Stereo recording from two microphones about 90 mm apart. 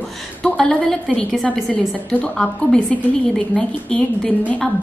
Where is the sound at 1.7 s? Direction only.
15° left (ahead or behind).